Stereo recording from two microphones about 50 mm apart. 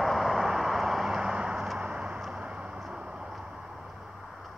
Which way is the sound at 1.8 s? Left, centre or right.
Right.